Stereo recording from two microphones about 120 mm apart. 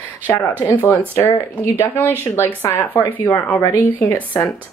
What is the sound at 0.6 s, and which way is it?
A woman's voice, 20° left (ahead or behind).